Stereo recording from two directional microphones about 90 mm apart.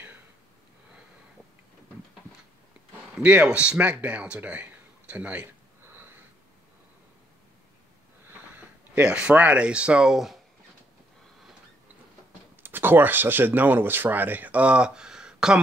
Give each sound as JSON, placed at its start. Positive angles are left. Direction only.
{"t": 3.2, "sound": "speech", "side_deg": -15}
{"t": 8.5, "sound": "speech", "side_deg": -10}
{"t": 12.6, "sound": "speech", "side_deg": -20}